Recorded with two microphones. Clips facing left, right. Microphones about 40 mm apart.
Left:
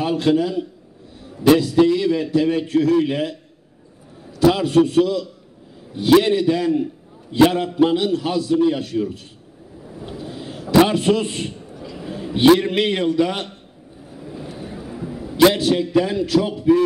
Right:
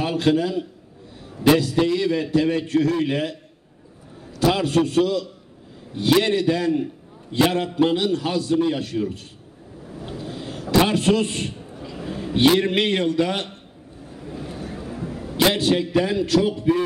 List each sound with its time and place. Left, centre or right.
0.0 s a man's voice: centre
9.8 s a sound: centre
10.8 s a man's voice: centre
14.1 s vehicle: centre
14.6 s a sound: centre
15.4 s a man's voice: centre